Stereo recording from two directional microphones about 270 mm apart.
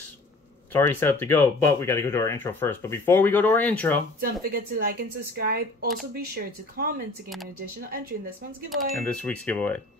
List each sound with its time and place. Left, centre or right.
0.7 s speech: centre
4.2 s speech: right
8.6 s speech: centre